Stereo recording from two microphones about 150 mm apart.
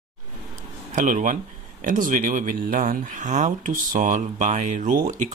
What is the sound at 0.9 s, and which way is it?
Speech, 60° right (ahead or behind).